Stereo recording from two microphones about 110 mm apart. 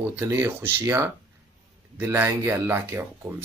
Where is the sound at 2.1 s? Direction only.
20° right (ahead or behind).